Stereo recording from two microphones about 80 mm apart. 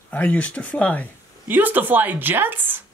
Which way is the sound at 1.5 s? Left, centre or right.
Right.